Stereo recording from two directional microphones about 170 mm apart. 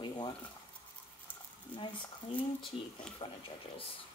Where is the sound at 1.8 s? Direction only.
30° left (ahead or behind).